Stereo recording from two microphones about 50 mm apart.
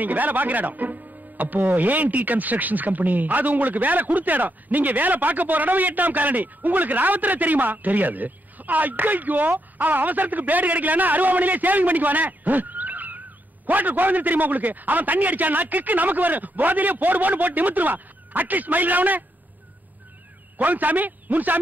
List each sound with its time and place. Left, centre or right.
0.0 s speech: right
20.5 s a man's voice: right